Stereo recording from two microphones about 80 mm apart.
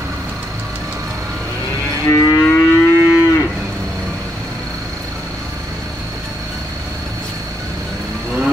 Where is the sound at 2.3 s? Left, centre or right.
Left.